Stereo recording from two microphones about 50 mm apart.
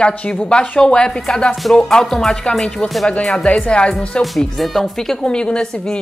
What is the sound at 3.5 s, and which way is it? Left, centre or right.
Speech, left.